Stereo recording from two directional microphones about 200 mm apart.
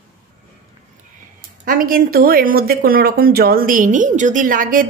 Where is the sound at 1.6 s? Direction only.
45° right (ahead or behind).